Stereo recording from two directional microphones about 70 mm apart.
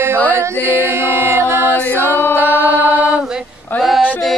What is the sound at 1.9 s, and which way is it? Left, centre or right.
A capella, left.